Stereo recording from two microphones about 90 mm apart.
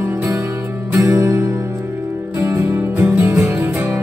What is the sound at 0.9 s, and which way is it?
Music, 40° right (ahead or behind).